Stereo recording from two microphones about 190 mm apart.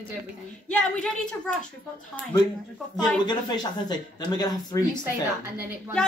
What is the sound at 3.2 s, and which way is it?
Speech, 20° left (ahead or behind).